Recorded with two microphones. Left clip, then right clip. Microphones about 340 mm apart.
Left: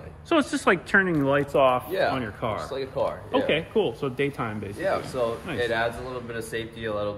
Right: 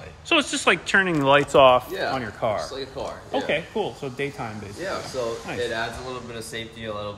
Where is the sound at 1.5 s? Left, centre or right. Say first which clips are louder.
Right 6 dB; right.